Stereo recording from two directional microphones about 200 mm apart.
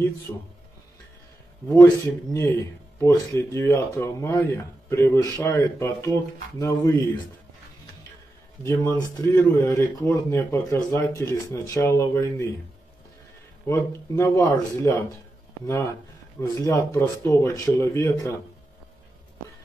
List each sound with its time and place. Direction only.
2.3 s a man's voice: 15° left (ahead or behind)
8.6 s a man's voice: 15° left (ahead or behind)
13.7 s a man's voice: 15° left (ahead or behind)
16.3 s a man's voice: 15° left (ahead or behind)